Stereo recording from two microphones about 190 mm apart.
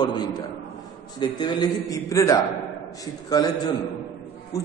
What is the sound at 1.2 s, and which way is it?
A man's voice, 20° left (ahead or behind).